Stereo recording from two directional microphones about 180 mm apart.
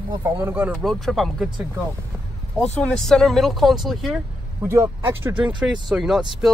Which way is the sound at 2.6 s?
5° left (ahead or behind).